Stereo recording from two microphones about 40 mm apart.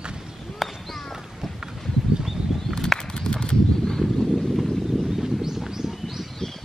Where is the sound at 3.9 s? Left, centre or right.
Centre.